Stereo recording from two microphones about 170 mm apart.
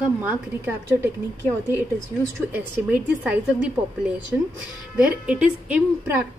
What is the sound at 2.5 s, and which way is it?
A woman's voice, 5° right (ahead or behind).